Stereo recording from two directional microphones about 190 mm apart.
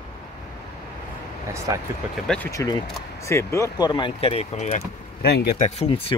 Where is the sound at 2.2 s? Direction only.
10° left (ahead or behind); by 4.8 s 35° left (ahead or behind).